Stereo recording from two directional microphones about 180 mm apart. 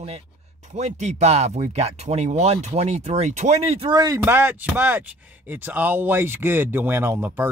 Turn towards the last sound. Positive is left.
turn(degrees=-10)  # may be behind; listen again after turning